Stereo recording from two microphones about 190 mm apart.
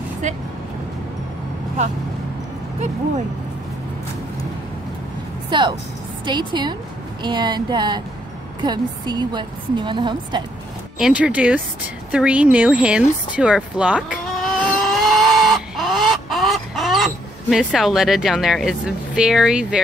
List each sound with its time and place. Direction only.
5.5 s a woman's voice: 25° right (ahead or behind)
11.0 s speech: 5° right (ahead or behind)
14.6 s chicken: centre (ahead or behind)